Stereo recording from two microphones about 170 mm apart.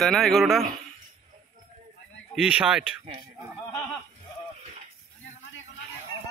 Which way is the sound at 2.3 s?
5° right (ahead or behind).